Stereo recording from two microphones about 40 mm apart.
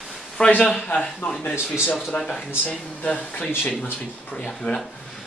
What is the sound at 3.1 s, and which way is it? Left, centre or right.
Speech, left.